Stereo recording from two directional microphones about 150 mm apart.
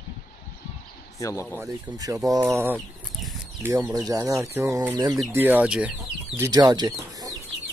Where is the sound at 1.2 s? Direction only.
20° left (ahead or behind).